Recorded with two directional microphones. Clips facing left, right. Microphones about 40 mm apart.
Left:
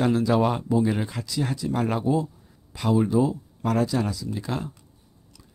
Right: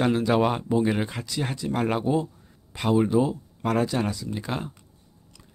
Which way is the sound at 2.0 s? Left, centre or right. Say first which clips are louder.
Even; right.